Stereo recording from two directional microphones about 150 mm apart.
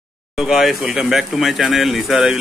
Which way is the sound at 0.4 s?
5° right (ahead or behind).